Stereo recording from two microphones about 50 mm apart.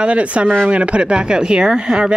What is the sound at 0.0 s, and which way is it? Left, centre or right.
Speech, right.